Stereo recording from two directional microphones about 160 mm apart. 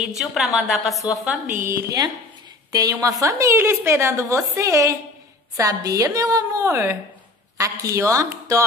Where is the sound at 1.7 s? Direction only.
25° right (ahead or behind).